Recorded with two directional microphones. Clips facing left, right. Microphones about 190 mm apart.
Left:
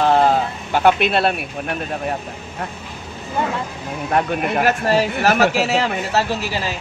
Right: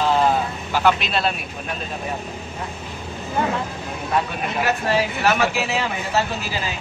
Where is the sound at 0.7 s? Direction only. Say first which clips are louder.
Left 4 dB; 55° left (ahead or behind).